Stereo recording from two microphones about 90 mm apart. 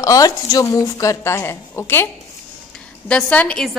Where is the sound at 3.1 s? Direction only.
15° left (ahead or behind).